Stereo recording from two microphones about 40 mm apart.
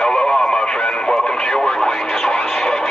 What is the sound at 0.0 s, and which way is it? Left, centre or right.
Radio, centre.